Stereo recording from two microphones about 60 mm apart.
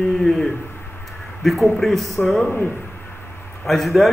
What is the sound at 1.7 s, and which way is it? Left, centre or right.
Speech, centre.